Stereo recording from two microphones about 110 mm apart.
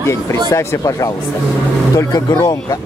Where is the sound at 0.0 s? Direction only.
25° left (ahead or behind).